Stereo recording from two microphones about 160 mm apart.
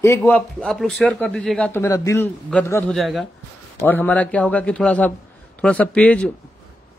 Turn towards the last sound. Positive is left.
turn(degrees=5)  # may be behind; listen again after turning